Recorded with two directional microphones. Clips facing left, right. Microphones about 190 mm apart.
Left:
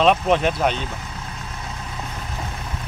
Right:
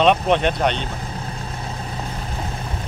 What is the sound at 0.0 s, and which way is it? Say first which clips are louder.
Speech: right 1 dB; centre (ahead or behind).